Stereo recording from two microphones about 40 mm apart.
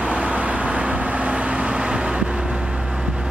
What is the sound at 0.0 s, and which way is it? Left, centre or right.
Vehicle, right.